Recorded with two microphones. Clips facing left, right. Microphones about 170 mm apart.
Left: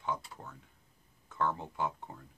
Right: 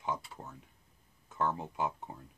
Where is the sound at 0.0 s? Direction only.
20° right (ahead or behind).